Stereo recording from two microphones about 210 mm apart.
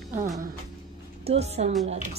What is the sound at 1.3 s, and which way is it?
Speech, 30° right (ahead or behind).